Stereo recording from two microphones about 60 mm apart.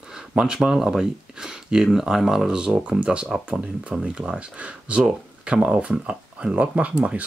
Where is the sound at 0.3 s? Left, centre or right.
Centre.